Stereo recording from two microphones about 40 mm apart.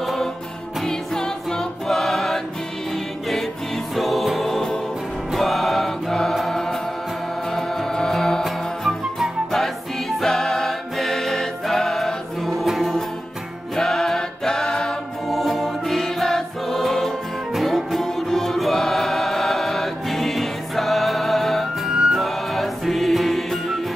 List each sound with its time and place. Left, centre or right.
0.0 s music: centre
0.8 s music: centre
3.9 s music: centre
10.2 s music: centre
13.7 s a sound: centre
15.2 s music: centre
21.8 s music: centre
22.1 s music: centre